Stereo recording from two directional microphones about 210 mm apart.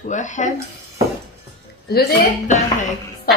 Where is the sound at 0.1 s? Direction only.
35° left (ahead or behind).